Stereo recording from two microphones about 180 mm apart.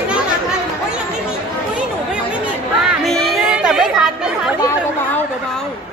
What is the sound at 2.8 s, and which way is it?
Chatter, centre (ahead or behind).